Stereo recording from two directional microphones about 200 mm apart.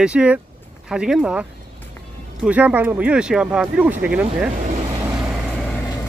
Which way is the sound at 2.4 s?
10° right (ahead or behind).